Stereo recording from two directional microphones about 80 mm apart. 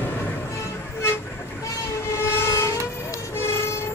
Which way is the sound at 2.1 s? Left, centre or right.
Left.